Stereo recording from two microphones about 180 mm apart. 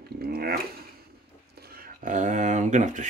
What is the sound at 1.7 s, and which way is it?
Speech, 45° right (ahead or behind).